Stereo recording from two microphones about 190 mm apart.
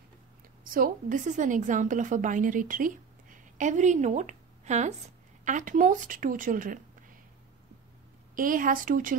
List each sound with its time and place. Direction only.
0.7 s a woman's voice: 45° right (ahead or behind)
8.4 s a woman's voice: 45° right (ahead or behind)